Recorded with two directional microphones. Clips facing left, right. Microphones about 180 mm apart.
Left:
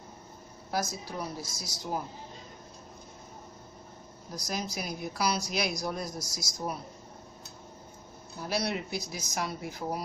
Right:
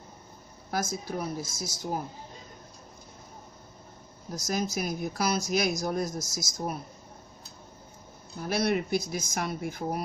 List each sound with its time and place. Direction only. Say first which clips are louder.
0.7 s speech: right 2 dB; 50° right (ahead or behind)
4.4 s speech: right 5 dB; 45° right (ahead or behind)
8.5 s speech: right 5 dB; 50° right (ahead or behind)